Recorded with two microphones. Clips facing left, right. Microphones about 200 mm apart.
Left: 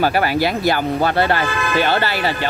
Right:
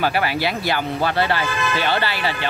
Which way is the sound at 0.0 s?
45° left (ahead or behind).